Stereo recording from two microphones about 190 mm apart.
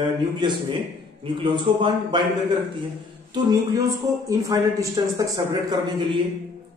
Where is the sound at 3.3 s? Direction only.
20° right (ahead or behind).